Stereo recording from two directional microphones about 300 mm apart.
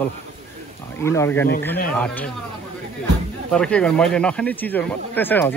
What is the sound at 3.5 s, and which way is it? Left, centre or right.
Speech, centre.